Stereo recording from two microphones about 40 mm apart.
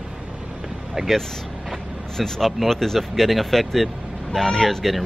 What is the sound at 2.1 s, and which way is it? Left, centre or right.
Speech, centre.